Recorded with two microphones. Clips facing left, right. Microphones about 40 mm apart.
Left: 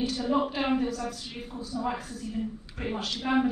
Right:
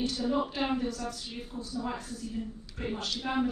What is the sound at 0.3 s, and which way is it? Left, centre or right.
Speech, left.